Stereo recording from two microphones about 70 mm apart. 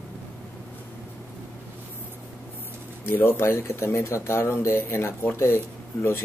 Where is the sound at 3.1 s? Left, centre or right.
Left.